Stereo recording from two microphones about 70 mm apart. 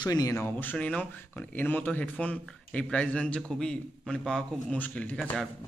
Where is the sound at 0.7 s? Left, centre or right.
Centre.